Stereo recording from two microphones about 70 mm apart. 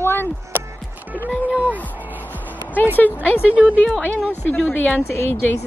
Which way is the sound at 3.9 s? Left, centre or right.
Centre.